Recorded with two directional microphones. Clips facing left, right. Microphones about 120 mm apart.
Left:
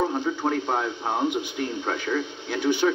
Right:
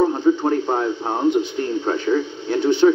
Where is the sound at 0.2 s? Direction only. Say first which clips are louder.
Right 8 dB; 20° right (ahead or behind).